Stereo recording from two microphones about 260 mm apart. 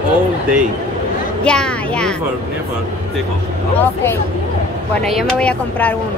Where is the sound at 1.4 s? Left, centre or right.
Centre.